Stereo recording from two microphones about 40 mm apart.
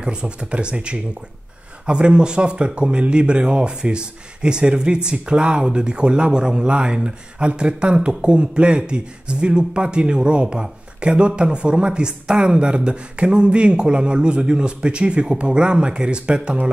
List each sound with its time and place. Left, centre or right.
0.0 s speech: right